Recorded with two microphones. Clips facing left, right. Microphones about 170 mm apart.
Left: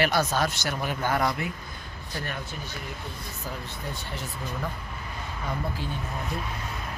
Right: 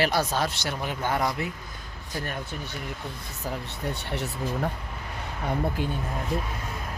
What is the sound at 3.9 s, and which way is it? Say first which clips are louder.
Speech: right 6 dB; 70° right (ahead or behind).